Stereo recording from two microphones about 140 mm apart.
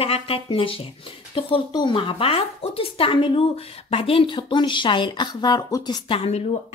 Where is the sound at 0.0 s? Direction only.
45° left (ahead or behind).